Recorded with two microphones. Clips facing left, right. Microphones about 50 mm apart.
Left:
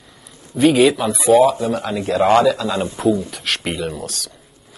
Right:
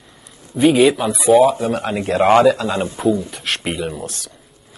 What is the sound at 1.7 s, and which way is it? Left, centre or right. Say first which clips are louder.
Speech: right 1 dB; right.